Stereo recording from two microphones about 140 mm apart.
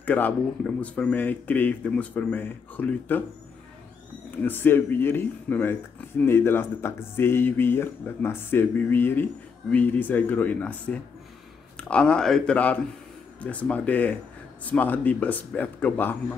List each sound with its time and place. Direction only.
0.0 s speech: 10° left (ahead or behind)
4.4 s speech: 15° left (ahead or behind)